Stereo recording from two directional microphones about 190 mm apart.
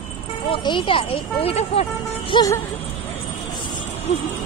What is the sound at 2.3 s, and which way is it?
Speech, 20° left (ahead or behind).